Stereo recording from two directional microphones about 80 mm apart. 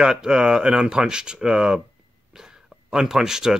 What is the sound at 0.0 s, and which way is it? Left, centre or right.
Speech, centre.